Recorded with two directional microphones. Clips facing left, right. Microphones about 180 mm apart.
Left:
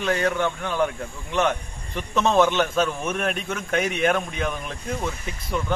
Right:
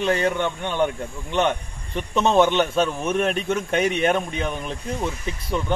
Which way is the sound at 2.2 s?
25° right (ahead or behind).